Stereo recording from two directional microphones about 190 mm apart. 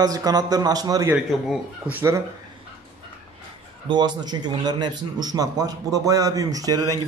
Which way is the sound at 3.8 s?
25° right (ahead or behind).